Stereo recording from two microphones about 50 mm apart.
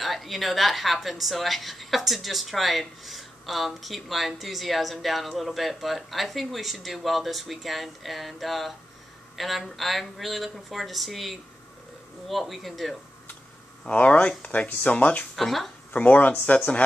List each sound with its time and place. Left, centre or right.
0.0 s a woman's voice: centre
13.8 s speech: left
15.3 s a woman's voice: centre
15.9 s speech: left